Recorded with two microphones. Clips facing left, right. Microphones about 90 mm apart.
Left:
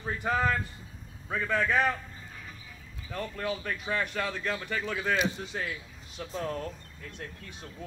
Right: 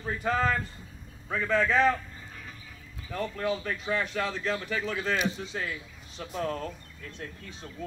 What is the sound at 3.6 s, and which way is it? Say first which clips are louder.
Speech: right 1 dB; 5° right (ahead or behind).